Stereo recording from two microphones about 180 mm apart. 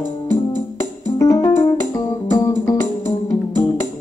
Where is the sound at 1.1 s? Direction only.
20° left (ahead or behind).